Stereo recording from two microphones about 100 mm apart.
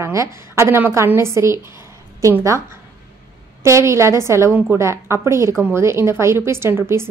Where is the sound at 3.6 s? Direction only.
30° right (ahead or behind).